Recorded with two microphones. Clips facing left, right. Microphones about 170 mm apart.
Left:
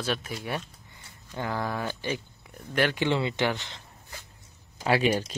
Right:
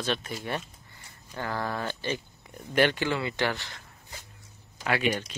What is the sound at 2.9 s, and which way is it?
Speech, 20° left (ahead or behind).